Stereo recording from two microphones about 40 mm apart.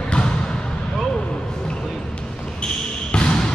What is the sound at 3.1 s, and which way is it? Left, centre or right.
Basketball bounce, left.